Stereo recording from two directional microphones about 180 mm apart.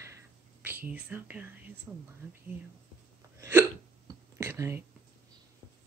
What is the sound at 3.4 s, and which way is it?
Hiccup, 15° right (ahead or behind).